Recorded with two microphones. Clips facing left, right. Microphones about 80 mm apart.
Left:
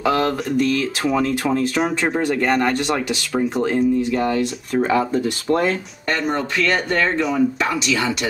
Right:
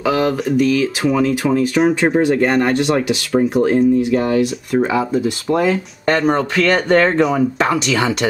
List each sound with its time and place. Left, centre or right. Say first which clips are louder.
0.0 s speech: right 2 dB; centre
2.0 s speech: right 5 dB; right
6.9 s speech: right 6 dB; right